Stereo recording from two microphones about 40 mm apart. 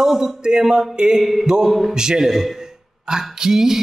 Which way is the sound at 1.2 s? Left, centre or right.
Centre.